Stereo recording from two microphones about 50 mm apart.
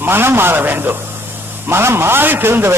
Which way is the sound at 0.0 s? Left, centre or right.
Right.